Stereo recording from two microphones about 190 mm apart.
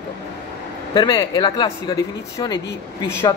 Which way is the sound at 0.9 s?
25° left (ahead or behind).